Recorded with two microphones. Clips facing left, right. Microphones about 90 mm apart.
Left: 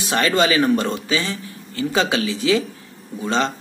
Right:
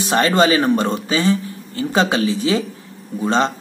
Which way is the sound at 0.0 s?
35° right (ahead or behind).